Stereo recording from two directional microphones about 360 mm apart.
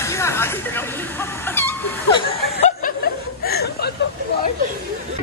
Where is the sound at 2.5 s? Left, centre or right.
Left.